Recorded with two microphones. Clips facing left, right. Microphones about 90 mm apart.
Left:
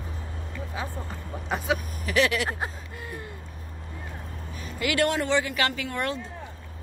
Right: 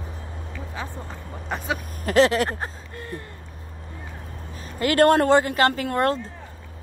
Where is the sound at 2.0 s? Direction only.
35° right (ahead or behind).